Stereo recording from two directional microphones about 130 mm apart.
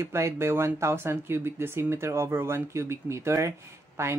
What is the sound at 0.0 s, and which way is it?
Speech, 20° right (ahead or behind).